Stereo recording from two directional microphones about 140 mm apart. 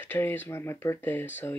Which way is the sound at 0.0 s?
15° left (ahead or behind).